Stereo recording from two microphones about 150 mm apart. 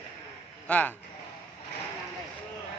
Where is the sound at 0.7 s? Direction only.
10° left (ahead or behind).